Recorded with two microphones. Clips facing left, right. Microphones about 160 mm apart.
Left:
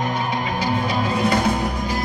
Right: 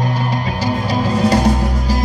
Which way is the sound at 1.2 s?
40° right (ahead or behind).